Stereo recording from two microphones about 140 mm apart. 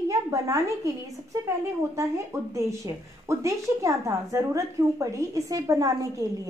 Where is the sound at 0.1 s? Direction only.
25° right (ahead or behind).